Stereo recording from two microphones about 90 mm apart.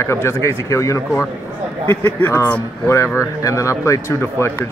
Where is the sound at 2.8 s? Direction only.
30° left (ahead or behind).